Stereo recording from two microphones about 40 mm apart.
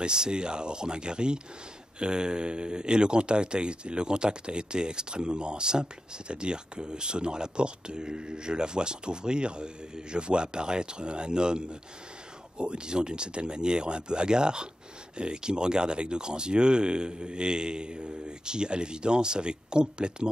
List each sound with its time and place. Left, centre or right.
0.0 s speech: right